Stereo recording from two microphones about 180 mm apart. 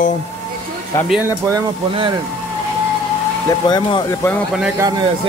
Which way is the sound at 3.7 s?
25° left (ahead or behind).